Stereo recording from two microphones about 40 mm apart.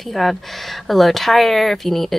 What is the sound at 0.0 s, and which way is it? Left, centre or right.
Speech, centre.